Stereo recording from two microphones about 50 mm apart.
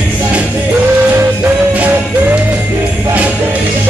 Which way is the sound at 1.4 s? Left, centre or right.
Right.